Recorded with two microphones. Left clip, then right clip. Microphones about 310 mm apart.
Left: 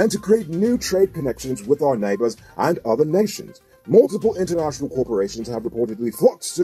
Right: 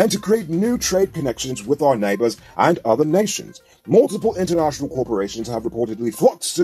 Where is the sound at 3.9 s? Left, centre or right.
Right.